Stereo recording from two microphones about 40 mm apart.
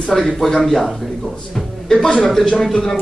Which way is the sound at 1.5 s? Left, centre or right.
Centre.